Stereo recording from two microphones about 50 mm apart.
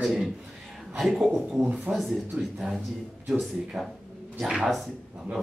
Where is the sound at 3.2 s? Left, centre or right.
Centre.